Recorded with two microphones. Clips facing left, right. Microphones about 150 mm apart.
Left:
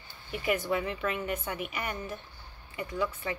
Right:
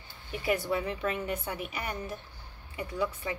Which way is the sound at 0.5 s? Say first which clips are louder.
Even; 35° right (ahead or behind).